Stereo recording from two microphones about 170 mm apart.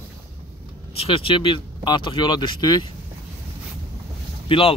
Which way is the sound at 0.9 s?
35° left (ahead or behind).